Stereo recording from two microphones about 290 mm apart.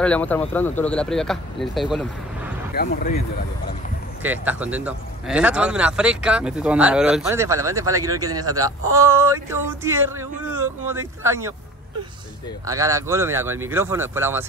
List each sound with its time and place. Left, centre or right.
0.0 s speech: centre
2.7 s speech: left
4.2 s speech: centre
12.6 s speech: centre